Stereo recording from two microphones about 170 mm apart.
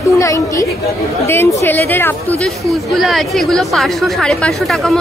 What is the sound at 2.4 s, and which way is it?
Speech, centre (ahead or behind).